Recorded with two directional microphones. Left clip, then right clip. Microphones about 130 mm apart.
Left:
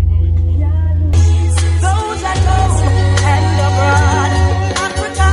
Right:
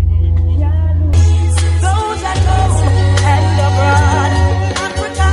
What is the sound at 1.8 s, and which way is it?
Music, 15° left (ahead or behind).